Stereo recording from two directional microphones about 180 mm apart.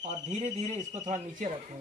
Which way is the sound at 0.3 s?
40° right (ahead or behind).